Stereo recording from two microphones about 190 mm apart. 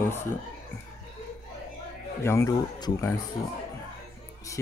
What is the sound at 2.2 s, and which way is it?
Speech, 15° left (ahead or behind).